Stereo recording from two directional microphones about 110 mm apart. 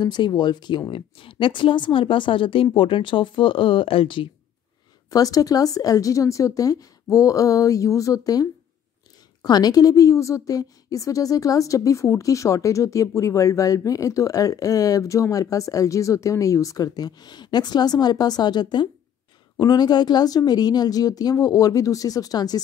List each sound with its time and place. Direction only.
0.0 s a woman's voice: 40° left (ahead or behind)
5.1 s a woman's voice: 35° left (ahead or behind)